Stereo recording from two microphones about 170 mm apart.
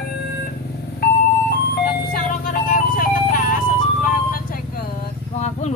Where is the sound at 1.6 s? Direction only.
65° left (ahead or behind).